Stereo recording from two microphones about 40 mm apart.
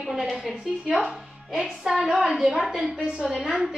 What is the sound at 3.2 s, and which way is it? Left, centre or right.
Speech, centre.